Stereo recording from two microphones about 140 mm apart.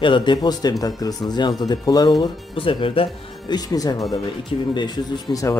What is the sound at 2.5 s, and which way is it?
Speech, 40° left (ahead or behind).